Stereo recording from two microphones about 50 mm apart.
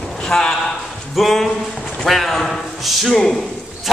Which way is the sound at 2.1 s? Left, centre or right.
Centre.